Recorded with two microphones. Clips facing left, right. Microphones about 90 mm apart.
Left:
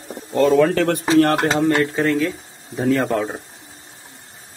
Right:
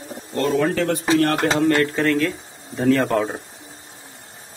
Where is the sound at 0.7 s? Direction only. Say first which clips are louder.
Left 3 dB; 70° left (ahead or behind).